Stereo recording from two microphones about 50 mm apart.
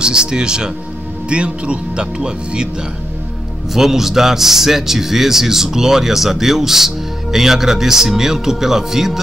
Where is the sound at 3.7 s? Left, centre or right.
Centre.